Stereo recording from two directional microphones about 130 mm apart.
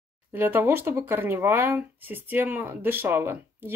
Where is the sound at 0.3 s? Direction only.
15° right (ahead or behind).